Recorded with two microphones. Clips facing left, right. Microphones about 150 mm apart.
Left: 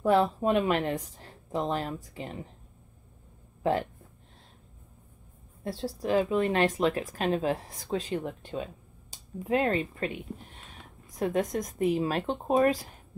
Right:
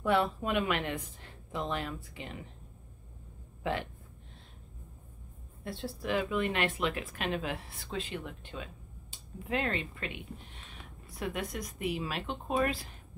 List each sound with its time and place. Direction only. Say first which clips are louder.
0.0 s speech: left 5 dB; 35° left (ahead or behind)
3.6 s speech: left 7 dB; 40° left (ahead or behind)
5.6 s speech: left 5 dB; 35° left (ahead or behind)